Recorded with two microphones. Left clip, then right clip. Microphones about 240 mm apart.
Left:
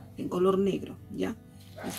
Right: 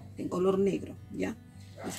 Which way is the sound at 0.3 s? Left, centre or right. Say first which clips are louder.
Left 2 dB; centre.